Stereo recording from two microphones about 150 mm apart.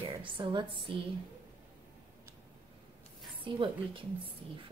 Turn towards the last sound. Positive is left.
turn(degrees=-35)  # may be behind; listen again after turning